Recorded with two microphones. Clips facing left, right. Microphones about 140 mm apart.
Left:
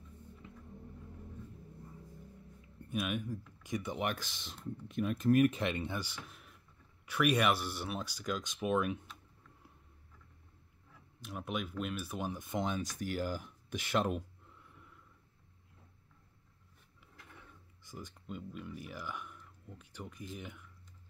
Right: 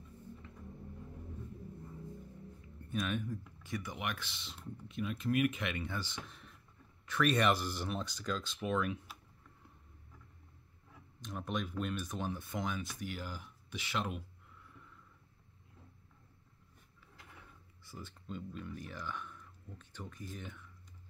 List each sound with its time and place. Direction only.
0.4 s vehicle: 15° left (ahead or behind)
2.9 s speech: 10° left (ahead or behind); by 5.9 s 30° left (ahead or behind)
6.2 s a sound: 5° left (ahead or behind)
7.1 s speech: 10° left (ahead or behind)
11.1 s speech: 5° left (ahead or behind); by 12.8 s 25° left (ahead or behind)
12.9 s speech: 45° left (ahead or behind)
17.8 s speech: 15° left (ahead or behind)